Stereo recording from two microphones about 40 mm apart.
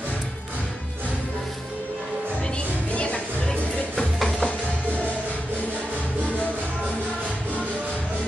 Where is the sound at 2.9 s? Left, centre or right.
Left.